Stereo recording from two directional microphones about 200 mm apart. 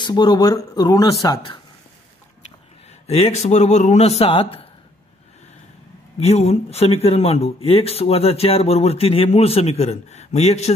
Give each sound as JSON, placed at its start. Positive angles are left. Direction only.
{"t": 0.0, "sound": "speech", "side_deg": 20}
{"t": 3.1, "sound": "speech", "side_deg": 30}
{"t": 6.1, "sound": "speech", "side_deg": 30}